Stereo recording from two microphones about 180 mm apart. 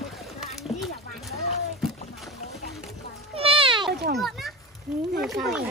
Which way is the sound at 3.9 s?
65° right (ahead or behind).